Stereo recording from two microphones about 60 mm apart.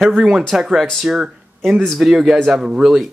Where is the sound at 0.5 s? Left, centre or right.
Centre.